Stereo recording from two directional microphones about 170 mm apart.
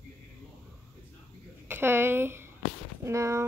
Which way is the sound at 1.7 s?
15° right (ahead or behind).